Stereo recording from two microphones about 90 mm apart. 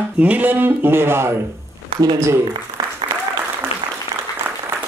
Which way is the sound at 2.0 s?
40° right (ahead or behind).